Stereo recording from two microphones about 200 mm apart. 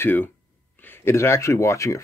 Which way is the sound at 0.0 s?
10° left (ahead or behind).